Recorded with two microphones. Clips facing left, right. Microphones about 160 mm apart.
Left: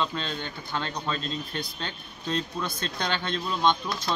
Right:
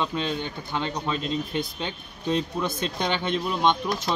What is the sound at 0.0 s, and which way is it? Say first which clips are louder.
Speech: right 3 dB; 15° right (ahead or behind).